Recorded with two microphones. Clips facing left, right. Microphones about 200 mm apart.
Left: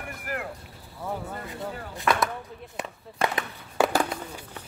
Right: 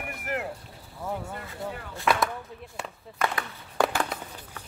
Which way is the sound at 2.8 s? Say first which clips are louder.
Left 3 dB; 20° left (ahead or behind).